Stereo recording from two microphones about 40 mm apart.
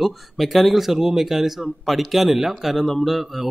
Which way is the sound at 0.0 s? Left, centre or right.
Centre.